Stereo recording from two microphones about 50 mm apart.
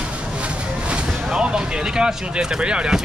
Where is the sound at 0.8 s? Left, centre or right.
Centre.